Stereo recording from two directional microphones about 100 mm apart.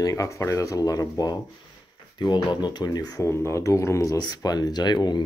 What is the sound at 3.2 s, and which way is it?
Speech, 25° left (ahead or behind).